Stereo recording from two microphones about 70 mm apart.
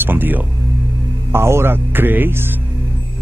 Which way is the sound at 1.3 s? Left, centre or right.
Right.